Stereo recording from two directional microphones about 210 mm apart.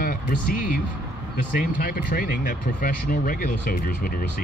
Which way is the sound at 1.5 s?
40° left (ahead or behind).